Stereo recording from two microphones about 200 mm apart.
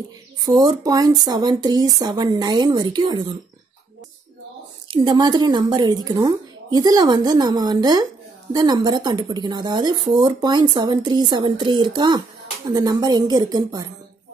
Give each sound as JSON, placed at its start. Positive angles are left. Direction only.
{"t": 0.4, "sound": "speech", "side_deg": -20}
{"t": 4.9, "sound": "speech", "side_deg": -20}